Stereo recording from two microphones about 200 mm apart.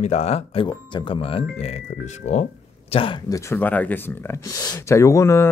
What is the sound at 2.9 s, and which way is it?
Speech, 25° left (ahead or behind).